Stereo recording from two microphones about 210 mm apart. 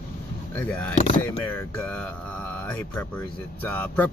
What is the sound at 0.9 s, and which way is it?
Speech, 35° left (ahead or behind).